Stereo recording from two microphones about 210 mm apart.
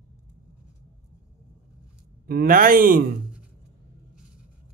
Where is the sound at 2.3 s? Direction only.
45° right (ahead or behind).